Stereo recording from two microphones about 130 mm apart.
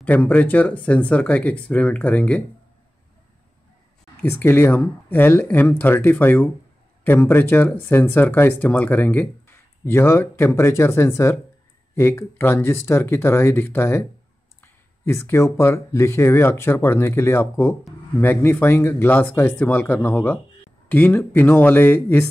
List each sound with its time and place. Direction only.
0.0 s speech: 10° left (ahead or behind)
4.2 s speech: 15° left (ahead or behind)